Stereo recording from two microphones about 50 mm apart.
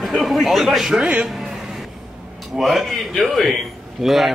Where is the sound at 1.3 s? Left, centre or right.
Centre.